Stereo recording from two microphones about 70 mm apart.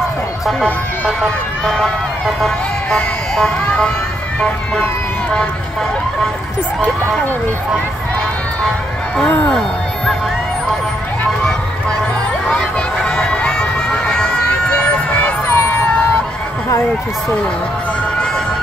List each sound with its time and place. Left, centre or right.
1.7 s speech: centre
9.5 s speech: centre
12.4 s crowd: centre
15.4 s a sound: left